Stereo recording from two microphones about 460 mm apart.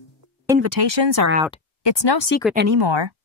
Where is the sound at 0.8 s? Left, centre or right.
Right.